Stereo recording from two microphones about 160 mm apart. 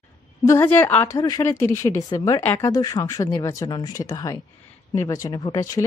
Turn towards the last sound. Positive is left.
turn(degrees=20)  # may be behind; listen again after turning